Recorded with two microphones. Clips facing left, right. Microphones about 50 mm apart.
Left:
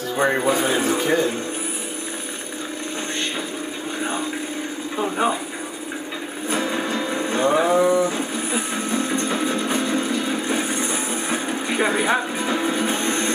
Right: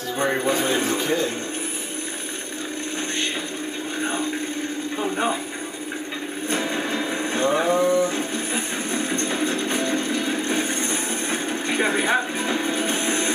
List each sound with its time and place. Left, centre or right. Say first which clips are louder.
0.1 s speech: left 3 dB; centre
4.0 s a sound: right 1 dB; centre
6.5 s music: left 2 dB; centre
7.7 s livestock: left 2 dB; centre
9.2 s music: left 1 dB; centre
10.4 s vehicle: left 1 dB; centre